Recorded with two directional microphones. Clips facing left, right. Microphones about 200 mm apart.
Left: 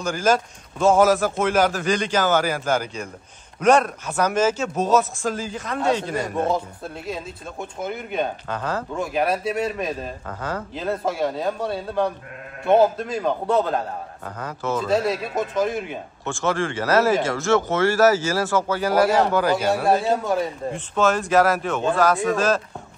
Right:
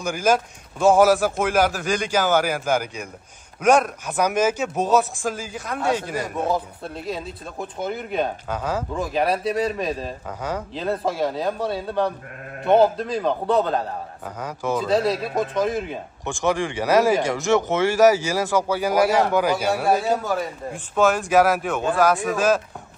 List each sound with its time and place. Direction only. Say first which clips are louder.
0.0 s speech: even; 10° right (ahead or behind)
14.2 s speech: right 1 dB; 10° right (ahead or behind)
14.8 s speech: right 1 dB; centre (ahead or behind)
16.3 s speech: right 1 dB; 15° right (ahead or behind)
21.3 s speech: right 1 dB; 10° right (ahead or behind)
22.1 s speech: left 2 dB; centre (ahead or behind)